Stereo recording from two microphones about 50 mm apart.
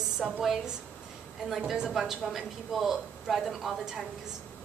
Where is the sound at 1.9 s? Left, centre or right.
Centre.